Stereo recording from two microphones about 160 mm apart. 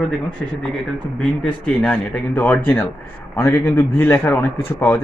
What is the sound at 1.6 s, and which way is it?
A man's voice, 5° left (ahead or behind).